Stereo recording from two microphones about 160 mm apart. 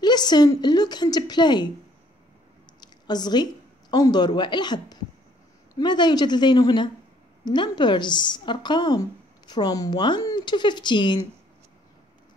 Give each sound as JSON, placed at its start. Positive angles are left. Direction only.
{"t": 0.0, "sound": "speech", "side_deg": 25}
{"t": 2.8, "sound": "a sound", "side_deg": 25}
{"t": 3.9, "sound": "speech", "side_deg": 25}